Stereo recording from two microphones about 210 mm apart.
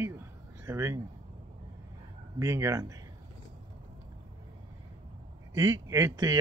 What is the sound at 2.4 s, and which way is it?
Speech, 15° right (ahead or behind).